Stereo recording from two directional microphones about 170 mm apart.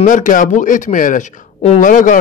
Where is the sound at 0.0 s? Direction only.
50° left (ahead or behind).